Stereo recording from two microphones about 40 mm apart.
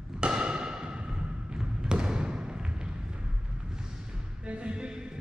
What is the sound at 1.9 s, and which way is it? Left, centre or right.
Basketball bounce, right.